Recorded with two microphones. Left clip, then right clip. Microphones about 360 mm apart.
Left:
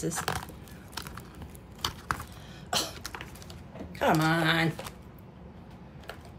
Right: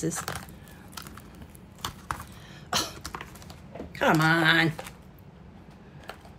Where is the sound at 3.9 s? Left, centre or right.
Right.